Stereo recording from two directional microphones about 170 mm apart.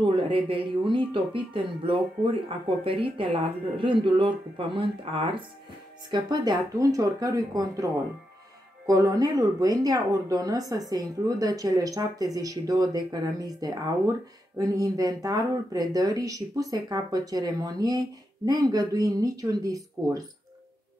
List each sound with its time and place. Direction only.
0.0 s speech: 30° right (ahead or behind)